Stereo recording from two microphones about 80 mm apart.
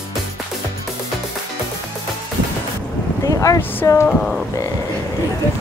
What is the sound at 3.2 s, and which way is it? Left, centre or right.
Speech, left.